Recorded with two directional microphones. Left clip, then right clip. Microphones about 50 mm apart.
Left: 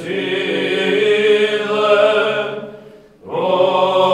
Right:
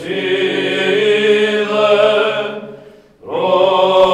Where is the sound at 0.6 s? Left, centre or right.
Centre.